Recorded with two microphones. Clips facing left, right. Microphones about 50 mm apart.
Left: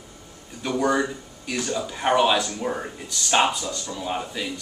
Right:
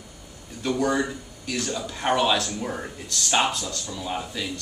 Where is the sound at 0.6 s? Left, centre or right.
Centre.